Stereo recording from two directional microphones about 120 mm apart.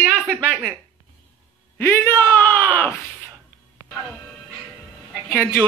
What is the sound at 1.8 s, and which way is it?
Speech, 15° left (ahead or behind).